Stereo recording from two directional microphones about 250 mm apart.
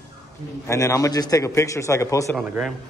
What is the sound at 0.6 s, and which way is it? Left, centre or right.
A man's voice, centre.